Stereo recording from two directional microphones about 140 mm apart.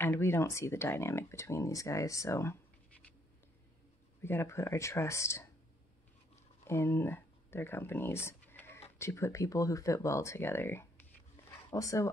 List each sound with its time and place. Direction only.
0.0 s speech: 15° left (ahead or behind)
4.2 s speech: 15° left (ahead or behind)
6.7 s speech: 15° left (ahead or behind)